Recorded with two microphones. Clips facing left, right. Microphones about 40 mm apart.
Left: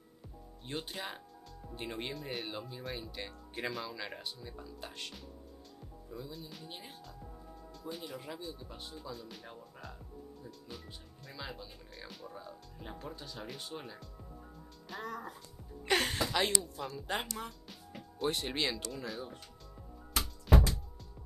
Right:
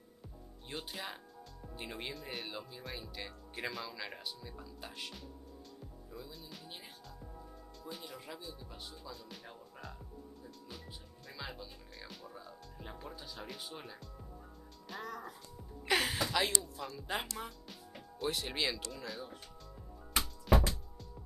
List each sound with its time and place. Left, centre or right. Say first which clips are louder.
0.7 s speech: left 3 dB; centre
20.5 s music: left 1 dB; centre